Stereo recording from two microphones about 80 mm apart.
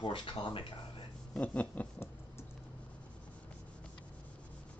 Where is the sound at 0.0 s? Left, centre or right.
Left.